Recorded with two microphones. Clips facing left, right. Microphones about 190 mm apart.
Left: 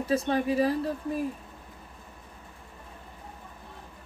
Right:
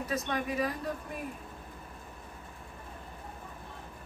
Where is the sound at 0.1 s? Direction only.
30° left (ahead or behind).